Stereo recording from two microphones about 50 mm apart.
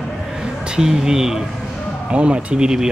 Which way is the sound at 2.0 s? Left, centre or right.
Right.